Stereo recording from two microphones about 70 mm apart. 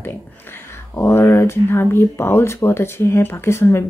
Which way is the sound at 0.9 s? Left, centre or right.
Left.